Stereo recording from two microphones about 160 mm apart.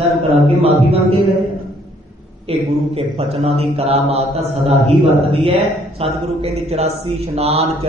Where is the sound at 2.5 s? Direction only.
40° right (ahead or behind).